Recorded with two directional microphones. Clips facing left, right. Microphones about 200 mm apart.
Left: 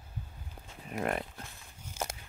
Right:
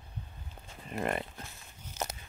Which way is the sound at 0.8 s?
5° left (ahead or behind).